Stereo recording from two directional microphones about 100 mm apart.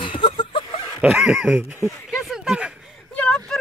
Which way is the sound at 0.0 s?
60° left (ahead or behind).